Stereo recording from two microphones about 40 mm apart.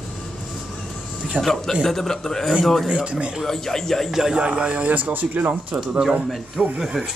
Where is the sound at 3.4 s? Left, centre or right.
Centre.